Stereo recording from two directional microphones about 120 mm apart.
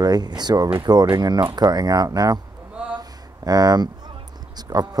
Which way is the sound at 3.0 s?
35° right (ahead or behind).